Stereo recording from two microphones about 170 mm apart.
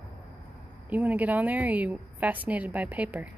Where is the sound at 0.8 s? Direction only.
10° right (ahead or behind).